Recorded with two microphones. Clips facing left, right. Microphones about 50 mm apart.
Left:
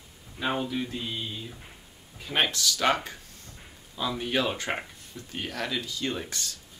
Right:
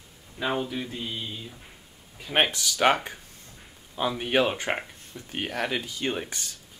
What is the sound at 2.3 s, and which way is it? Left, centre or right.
Speech, right.